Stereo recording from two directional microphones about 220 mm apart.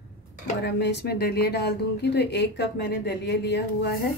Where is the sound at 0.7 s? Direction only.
50° left (ahead or behind).